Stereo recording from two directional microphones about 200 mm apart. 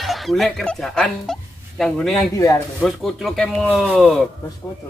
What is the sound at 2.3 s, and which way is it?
Speech, 15° left (ahead or behind).